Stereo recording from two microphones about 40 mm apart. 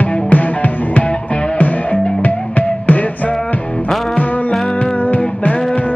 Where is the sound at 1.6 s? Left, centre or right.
Left.